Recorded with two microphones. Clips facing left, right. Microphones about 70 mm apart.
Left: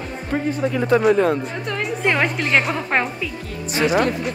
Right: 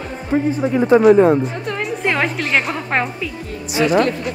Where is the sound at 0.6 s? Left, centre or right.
Right.